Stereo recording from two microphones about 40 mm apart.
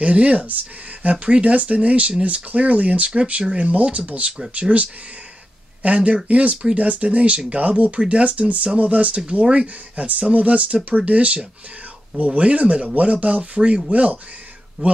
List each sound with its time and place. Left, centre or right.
0.0 s speech: right